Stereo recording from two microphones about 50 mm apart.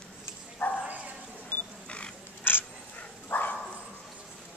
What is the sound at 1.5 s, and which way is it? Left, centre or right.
Wild animals, left.